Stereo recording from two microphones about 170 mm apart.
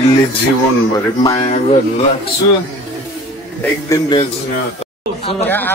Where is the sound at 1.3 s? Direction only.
35° left (ahead or behind).